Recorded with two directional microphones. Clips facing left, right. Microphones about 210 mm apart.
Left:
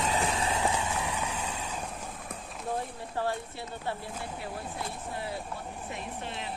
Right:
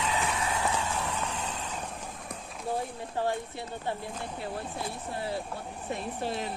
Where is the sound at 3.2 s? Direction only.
15° right (ahead or behind).